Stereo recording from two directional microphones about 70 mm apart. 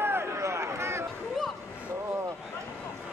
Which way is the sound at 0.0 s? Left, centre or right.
Right.